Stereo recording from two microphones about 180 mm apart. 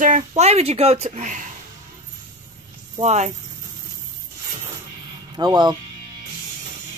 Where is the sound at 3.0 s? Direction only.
40° right (ahead or behind).